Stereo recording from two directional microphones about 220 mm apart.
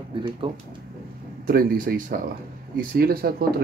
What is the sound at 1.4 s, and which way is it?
Speech, 40° right (ahead or behind).